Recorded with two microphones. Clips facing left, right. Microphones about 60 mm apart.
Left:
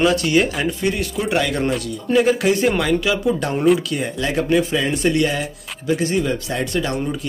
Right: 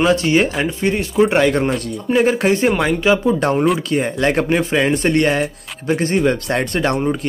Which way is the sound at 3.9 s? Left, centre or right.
Right.